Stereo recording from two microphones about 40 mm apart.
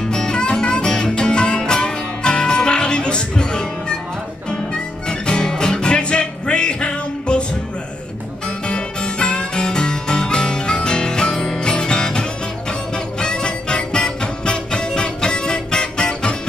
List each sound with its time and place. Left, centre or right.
0.0 s music: centre
8.5 s music: left